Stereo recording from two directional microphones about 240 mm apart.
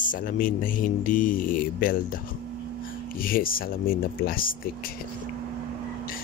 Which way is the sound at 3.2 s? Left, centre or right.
Left.